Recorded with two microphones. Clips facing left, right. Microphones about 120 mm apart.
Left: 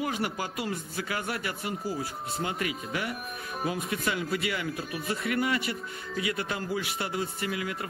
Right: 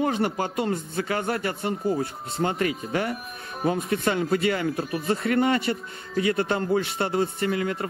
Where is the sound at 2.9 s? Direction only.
40° right (ahead or behind).